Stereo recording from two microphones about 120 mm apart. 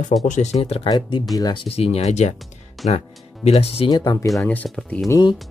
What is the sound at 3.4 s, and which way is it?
Speech, 60° left (ahead or behind).